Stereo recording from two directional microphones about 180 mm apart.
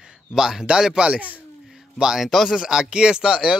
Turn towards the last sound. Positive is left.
turn(degrees=-5)  # may be behind; listen again after turning